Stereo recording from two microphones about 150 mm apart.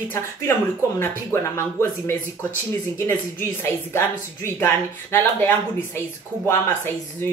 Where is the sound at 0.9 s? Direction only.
15° left (ahead or behind).